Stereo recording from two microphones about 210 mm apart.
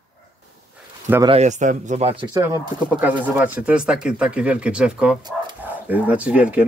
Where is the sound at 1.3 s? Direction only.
35° right (ahead or behind).